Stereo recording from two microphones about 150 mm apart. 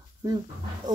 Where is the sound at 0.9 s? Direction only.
55° right (ahead or behind).